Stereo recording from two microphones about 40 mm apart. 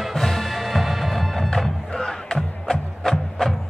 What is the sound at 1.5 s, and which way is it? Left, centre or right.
Music, centre.